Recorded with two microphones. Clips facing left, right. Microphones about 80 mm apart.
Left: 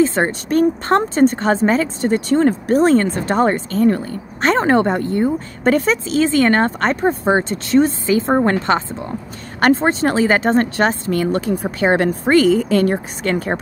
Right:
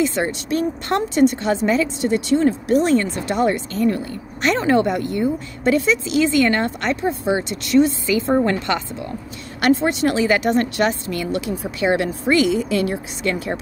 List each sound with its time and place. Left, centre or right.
0.0 s speech: left